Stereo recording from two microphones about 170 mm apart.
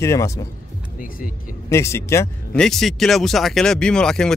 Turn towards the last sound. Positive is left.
turn(degrees=5)  # may be behind; listen again after turning